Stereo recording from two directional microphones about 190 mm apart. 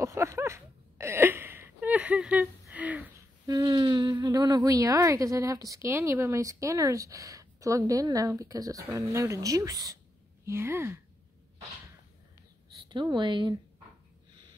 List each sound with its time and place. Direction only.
0.0 s a sound: 15° right (ahead or behind)
3.4 s speech: 20° right (ahead or behind)
12.8 s speech: 25° right (ahead or behind)